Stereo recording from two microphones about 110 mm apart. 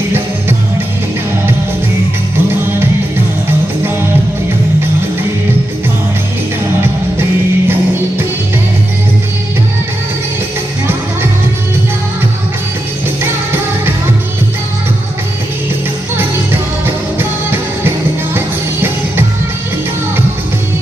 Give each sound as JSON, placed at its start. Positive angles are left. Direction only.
{"t": 6.8, "sound": "music", "side_deg": -20}
{"t": 16.8, "sound": "music", "side_deg": -20}